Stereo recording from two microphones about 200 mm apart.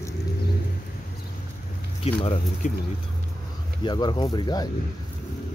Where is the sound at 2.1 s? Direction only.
25° left (ahead or behind).